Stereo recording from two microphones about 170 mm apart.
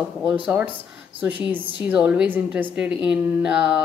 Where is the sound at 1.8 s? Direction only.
5° right (ahead or behind).